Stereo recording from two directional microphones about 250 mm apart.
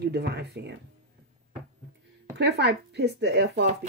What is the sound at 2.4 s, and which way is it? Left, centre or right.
Speech, right.